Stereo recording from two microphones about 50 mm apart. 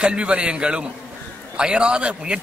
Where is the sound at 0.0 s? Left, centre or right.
Centre.